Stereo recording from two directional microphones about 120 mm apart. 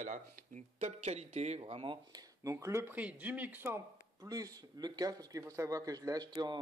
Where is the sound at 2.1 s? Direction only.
30° right (ahead or behind); by 3.7 s 15° right (ahead or behind).